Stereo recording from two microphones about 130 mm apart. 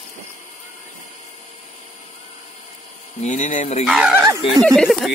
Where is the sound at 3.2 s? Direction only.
70° left (ahead or behind).